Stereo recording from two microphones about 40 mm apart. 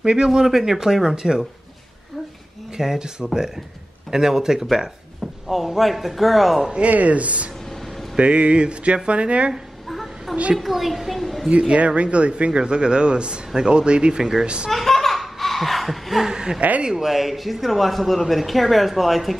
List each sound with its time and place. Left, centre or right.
0.0 s speech: centre
2.8 s speech: centre
5.2 s speech: centre
6.9 s a man's voice: right
9.8 s a sound: centre
10.6 s a woman's voice: centre
11.5 s a man's voice: right
14.7 s a sound: centre
16.3 s a man's voice: centre